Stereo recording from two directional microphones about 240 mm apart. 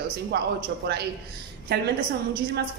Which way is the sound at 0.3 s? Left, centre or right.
Right.